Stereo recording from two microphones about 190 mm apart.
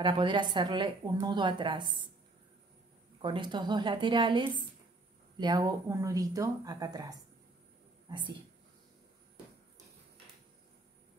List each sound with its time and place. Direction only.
0.0 s a woman's voice: 25° right (ahead or behind)
3.2 s a woman's voice: 25° right (ahead or behind)